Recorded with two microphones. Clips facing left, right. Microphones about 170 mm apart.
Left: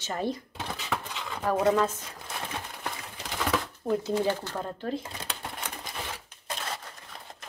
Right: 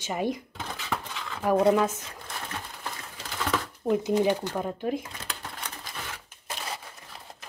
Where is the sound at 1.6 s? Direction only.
10° right (ahead or behind).